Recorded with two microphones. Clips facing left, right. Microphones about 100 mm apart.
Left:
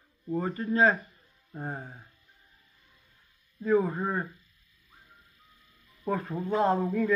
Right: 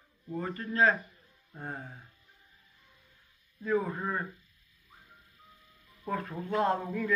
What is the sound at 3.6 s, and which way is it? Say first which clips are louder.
Speech: left 5 dB; 20° left (ahead or behind).